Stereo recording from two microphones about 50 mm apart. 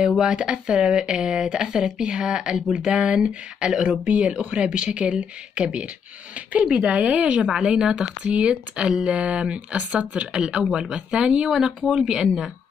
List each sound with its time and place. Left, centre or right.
0.2 s speech: centre
8.8 s speech: centre
9.1 s speech: right